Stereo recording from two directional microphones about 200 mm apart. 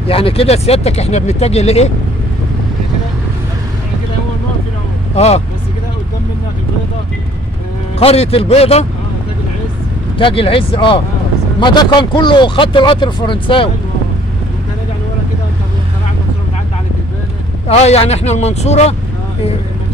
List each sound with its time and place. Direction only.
0.0 s speech: 30° left (ahead or behind)
5.1 s speech: 30° left (ahead or behind)
8.0 s speech: 30° left (ahead or behind)
10.1 s speech: 25° left (ahead or behind)
17.6 s speech: 30° left (ahead or behind)